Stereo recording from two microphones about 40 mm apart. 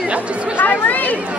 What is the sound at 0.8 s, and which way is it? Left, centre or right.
Speech, left.